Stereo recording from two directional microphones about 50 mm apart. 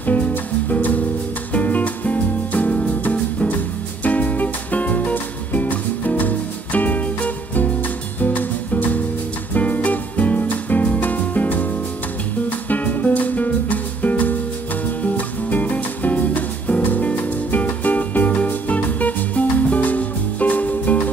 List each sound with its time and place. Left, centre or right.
0.0 s music: left